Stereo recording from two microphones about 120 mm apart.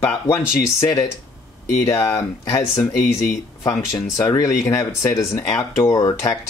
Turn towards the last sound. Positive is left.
turn(degrees=25)  # may be behind; listen again after turning